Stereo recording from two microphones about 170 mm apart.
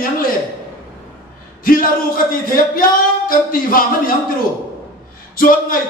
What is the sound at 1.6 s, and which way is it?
A man's voice, 55° left (ahead or behind).